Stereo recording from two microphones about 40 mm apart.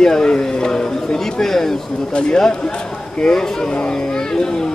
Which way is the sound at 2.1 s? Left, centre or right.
Left.